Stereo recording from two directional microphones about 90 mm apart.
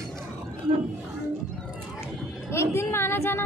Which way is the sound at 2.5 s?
30° left (ahead or behind).